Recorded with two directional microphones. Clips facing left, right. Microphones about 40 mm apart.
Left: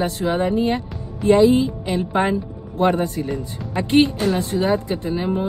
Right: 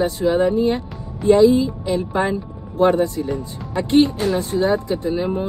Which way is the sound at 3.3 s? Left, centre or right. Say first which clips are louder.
Right 1 dB; centre.